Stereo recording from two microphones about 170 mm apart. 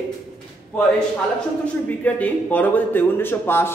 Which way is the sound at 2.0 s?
10° left (ahead or behind).